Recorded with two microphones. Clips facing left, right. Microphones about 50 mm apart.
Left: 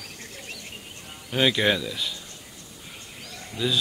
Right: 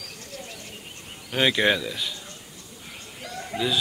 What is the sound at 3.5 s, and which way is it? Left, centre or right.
Speech, right.